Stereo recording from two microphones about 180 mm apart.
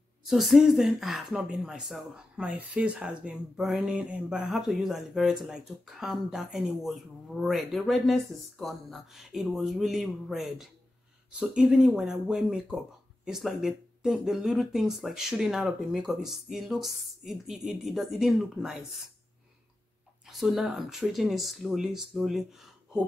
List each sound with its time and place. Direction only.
0.2 s a woman's voice: centre (ahead or behind)
20.2 s a woman's voice: centre (ahead or behind)